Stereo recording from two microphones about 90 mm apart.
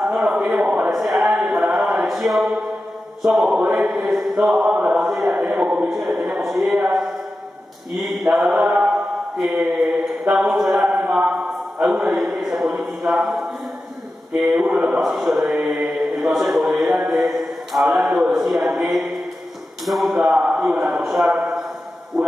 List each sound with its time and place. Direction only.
0.0 s speech: 5° right (ahead or behind)
2.0 s a sound: 5° right (ahead or behind)
4.9 s speech: centre (ahead or behind)
8.3 s mantra: 10° right (ahead or behind)
10.3 s a man's voice: centre (ahead or behind)
11.2 s a sound: centre (ahead or behind)
12.0 s speech: 5° right (ahead or behind)
14.6 s mantra: 15° right (ahead or behind)
14.9 s a man's voice: centre (ahead or behind)
21.4 s a sound: 5° right (ahead or behind)